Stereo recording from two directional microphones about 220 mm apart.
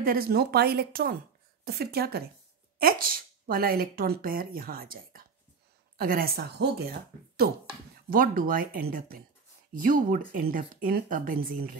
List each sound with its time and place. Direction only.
0.0 s a woman's voice: 40° right (ahead or behind)